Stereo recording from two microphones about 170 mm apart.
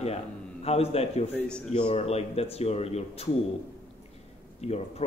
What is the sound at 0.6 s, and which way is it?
Speech, 35° left (ahead or behind).